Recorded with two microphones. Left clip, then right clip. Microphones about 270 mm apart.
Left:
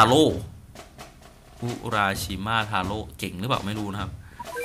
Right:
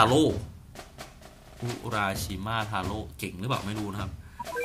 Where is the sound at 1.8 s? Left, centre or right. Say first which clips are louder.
Left 5 dB; centre.